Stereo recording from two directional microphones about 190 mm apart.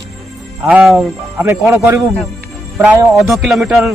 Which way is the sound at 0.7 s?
5° right (ahead or behind).